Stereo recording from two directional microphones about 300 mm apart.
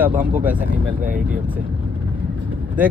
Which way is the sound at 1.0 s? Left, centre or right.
Right.